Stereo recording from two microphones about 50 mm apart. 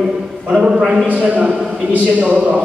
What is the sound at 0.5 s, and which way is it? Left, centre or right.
Speech, centre.